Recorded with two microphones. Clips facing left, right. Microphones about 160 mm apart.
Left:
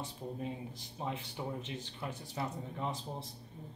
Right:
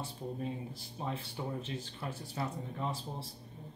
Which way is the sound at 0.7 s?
15° left (ahead or behind).